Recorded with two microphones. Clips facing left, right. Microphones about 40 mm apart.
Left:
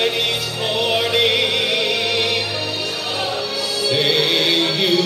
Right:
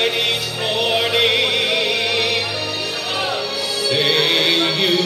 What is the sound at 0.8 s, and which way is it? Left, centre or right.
Music, centre.